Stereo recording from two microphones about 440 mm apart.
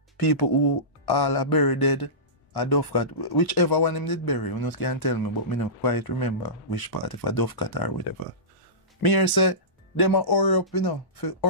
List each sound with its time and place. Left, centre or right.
0.2 s speech: left
9.0 s speech: left